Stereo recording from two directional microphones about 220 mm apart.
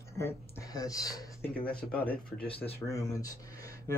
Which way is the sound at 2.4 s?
25° left (ahead or behind).